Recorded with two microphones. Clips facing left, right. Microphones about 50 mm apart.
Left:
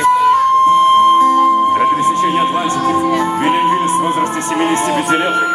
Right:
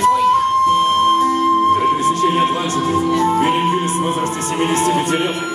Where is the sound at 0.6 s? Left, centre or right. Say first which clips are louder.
Left 5 dB; left.